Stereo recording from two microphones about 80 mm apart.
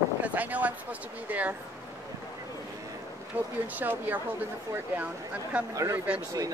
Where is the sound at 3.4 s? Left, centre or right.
Right.